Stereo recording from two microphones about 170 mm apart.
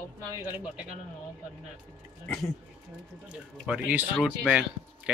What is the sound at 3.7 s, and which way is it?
Speech, 10° right (ahead or behind).